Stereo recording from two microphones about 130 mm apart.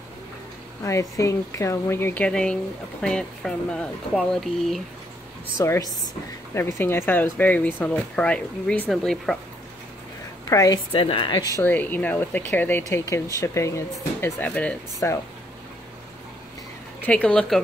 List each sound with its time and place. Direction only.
0.8 s speech: 25° left (ahead or behind); by 4.8 s centre (ahead or behind)
5.6 s speech: 25° left (ahead or behind); by 9.4 s 5° left (ahead or behind)
10.5 s speech: 25° left (ahead or behind)
10.9 s a woman's voice: 45° left (ahead or behind)
11.6 s speech: 15° left (ahead or behind)
15.0 s speech: 20° left (ahead or behind)
17.0 s speech: 10° left (ahead or behind)